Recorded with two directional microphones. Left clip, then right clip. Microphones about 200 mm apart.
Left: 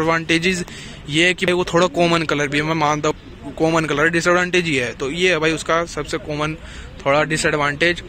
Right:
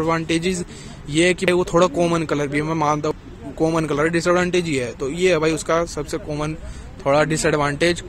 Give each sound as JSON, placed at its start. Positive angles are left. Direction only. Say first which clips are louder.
{"t": 0.0, "sound": "a man's voice", "louder": "left 3 dB", "side_deg": 0}